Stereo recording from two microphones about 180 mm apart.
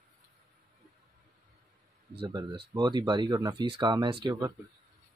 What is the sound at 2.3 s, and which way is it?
Speech, 25° right (ahead or behind).